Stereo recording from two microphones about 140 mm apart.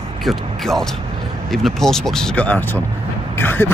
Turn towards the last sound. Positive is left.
turn(degrees=15)  # may be behind; listen again after turning